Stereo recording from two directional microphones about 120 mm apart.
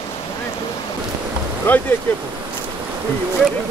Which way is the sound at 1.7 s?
15° left (ahead or behind).